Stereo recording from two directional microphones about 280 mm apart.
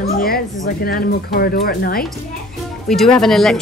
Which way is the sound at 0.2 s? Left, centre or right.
Left.